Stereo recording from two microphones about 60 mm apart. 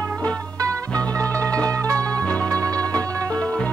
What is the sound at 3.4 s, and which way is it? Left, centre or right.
Music, centre.